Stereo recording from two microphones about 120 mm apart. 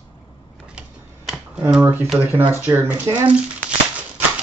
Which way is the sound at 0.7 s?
5° right (ahead or behind).